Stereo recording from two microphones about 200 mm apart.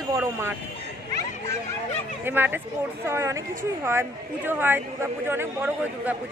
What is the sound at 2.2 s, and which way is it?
A woman's voice, 10° right (ahead or behind).